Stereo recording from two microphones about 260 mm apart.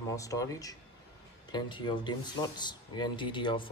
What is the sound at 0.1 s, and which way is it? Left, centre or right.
Speech, centre.